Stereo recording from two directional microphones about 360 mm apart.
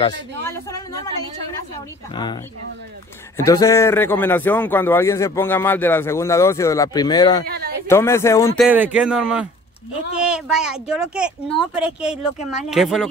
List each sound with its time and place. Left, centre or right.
0.0 s a woman's voice: centre
3.4 s a man's voice: centre
7.4 s a sound: right
7.8 s a man's voice: centre
8.6 s speech: centre